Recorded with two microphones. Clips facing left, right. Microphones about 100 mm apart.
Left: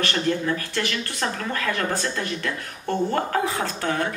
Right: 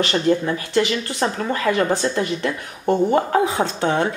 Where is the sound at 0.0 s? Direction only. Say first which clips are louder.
Right 5 dB; 20° right (ahead or behind).